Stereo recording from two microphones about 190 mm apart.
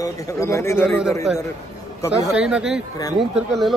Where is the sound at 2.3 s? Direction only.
5° right (ahead or behind).